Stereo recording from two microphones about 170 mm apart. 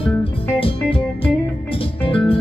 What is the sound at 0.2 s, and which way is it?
Music, 30° left (ahead or behind).